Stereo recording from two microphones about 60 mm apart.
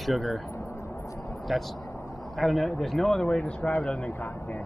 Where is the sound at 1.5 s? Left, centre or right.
Centre.